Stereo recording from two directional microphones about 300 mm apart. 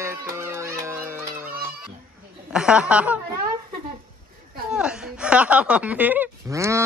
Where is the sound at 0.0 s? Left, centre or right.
Centre.